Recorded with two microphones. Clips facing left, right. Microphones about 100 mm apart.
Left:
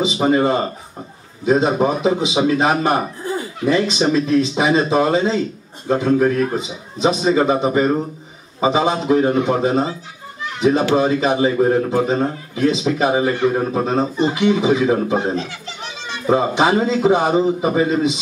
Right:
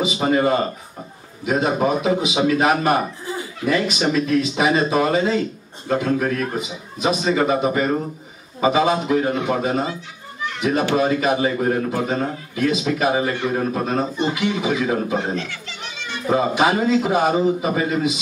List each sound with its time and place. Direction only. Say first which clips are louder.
0.0 s a man's voice: left 2 dB; 25° left (ahead or behind)